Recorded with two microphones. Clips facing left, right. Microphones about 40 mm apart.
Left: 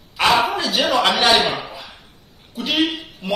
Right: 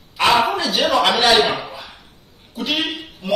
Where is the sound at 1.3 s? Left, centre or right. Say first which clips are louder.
Right 1 dB; right.